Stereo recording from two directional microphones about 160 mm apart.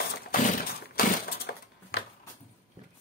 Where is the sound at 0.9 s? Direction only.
80° left.